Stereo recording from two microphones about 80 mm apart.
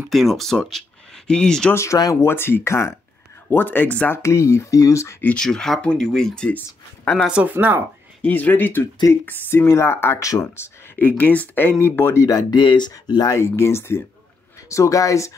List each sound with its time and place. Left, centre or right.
0.1 s speech: centre
1.7 s speech: left; by 4.1 s centre
4.1 s speech: left
5.4 s speech: centre
7.2 s speech: centre
7.5 s speech: right
8.2 s speech: left
10.1 s speech: left
11.0 s speech: left
12.3 s speech: left
13.3 s speech: left